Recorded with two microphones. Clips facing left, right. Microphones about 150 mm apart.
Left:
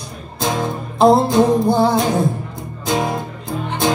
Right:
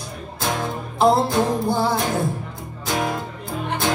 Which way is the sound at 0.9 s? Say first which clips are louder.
Left 5 dB; 20° left (ahead or behind).